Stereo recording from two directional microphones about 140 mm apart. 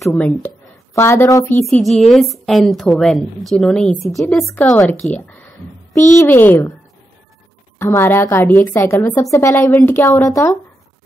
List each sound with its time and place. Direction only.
0.1 s a woman's voice: 10° left (ahead or behind)
1.7 s a woman's voice: centre (ahead or behind); by 6.7 s 15° left (ahead or behind)
7.8 s a woman's voice: 15° left (ahead or behind)